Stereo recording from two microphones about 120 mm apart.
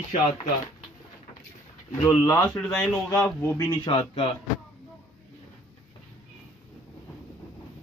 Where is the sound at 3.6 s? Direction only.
45° left (ahead or behind).